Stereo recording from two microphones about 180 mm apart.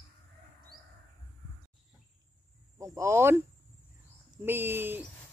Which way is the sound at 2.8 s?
15° right (ahead or behind).